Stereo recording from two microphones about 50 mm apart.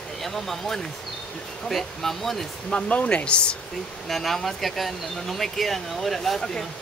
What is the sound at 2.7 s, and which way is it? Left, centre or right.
Speech, left.